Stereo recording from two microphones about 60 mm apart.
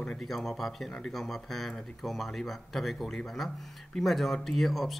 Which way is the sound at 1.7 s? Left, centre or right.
Centre.